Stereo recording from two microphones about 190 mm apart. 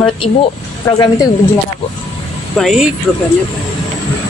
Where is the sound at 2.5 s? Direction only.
Centre (ahead or behind).